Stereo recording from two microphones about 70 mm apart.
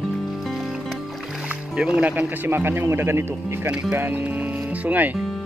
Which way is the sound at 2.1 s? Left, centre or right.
Right.